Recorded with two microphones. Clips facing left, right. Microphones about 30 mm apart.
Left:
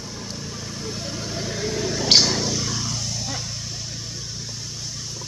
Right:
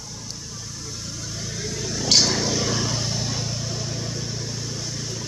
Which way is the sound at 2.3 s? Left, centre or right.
Centre.